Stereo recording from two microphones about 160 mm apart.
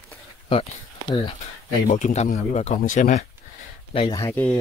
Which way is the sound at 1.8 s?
50° left (ahead or behind).